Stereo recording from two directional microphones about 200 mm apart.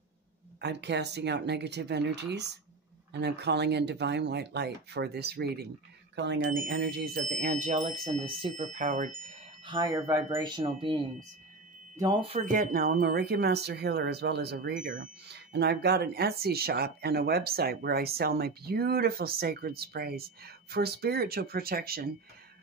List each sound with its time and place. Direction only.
0.6 s speech: 60° right (ahead or behind); by 9.3 s 40° right (ahead or behind)
9.7 s speech: 20° right (ahead or behind)
12.0 s speech: 25° right (ahead or behind); by 22.1 s 50° right (ahead or behind)